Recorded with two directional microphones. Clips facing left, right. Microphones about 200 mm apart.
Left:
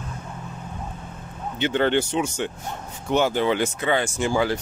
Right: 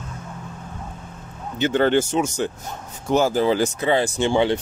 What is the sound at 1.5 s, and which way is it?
Speech, 45° right (ahead or behind).